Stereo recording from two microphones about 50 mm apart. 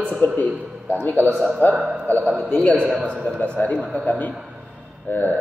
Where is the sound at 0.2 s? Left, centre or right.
Left.